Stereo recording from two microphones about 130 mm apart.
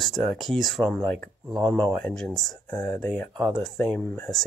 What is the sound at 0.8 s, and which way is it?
Speech, 20° right (ahead or behind).